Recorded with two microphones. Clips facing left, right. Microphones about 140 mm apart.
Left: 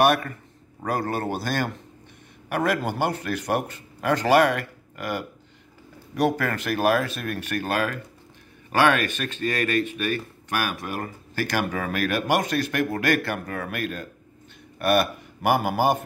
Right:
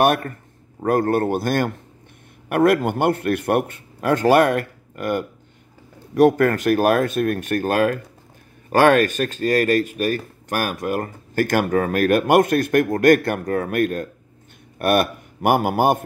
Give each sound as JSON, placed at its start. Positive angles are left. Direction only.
{"t": 0.0, "sound": "a man's voice", "side_deg": -50}